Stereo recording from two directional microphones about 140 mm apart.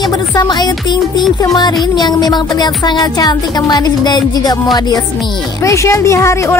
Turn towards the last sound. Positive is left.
turn(degrees=20)  # may be behind; listen again after turning